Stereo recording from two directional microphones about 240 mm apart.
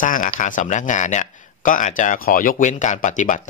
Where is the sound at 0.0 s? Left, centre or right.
Left.